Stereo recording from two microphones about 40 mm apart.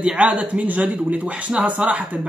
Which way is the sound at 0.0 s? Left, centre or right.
Right.